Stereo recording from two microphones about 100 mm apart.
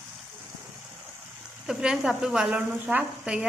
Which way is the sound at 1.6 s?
5° right (ahead or behind).